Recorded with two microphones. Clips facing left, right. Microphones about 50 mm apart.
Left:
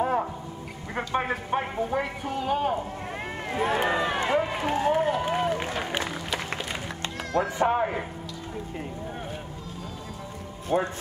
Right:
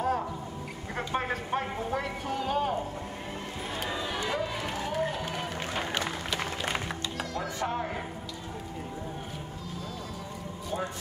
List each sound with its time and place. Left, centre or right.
0.0 s a sound: left
0.9 s a man's voice: centre
3.5 s speech: left
3.8 s run: left
5.2 s music: left
7.4 s speech: left
10.7 s speech: left